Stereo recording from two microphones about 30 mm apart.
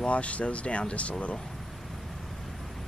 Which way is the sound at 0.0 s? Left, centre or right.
Left.